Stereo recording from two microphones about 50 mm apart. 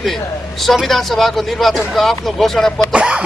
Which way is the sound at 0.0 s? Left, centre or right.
Centre.